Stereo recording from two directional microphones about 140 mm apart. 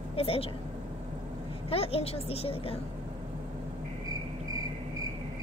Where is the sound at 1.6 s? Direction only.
45° left (ahead or behind).